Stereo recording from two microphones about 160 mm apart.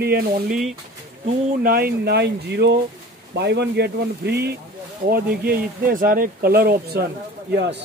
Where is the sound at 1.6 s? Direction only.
70° right (ahead or behind); by 4.5 s 90° right.